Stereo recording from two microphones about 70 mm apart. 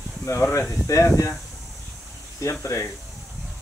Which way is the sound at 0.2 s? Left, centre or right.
Left.